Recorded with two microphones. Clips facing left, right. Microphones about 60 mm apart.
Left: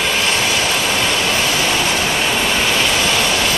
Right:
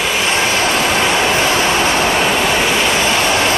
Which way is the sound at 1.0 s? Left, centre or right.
Right.